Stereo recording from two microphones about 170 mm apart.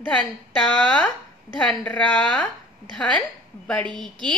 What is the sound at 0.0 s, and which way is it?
Speech, 5° left (ahead or behind).